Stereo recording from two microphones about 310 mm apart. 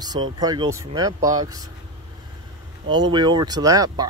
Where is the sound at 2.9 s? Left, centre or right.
Centre.